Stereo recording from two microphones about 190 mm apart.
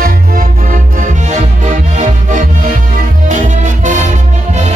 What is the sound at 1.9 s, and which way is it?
Music, 40° right (ahead or behind).